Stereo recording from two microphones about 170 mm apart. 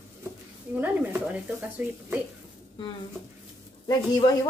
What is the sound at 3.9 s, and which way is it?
Speech, 20° left (ahead or behind).